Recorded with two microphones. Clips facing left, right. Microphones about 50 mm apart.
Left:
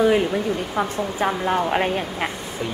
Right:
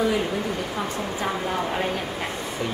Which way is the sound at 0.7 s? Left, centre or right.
Left.